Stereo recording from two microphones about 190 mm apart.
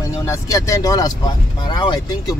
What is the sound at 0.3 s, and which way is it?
Speech, 15° left (ahead or behind).